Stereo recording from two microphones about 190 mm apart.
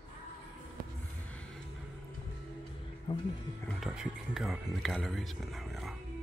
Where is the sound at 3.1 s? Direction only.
25° left (ahead or behind).